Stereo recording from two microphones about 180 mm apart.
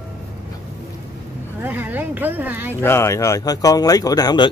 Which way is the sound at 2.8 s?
15° left (ahead or behind).